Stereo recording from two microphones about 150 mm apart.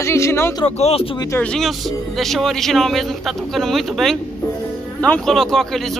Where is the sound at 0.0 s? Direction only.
20° left (ahead or behind).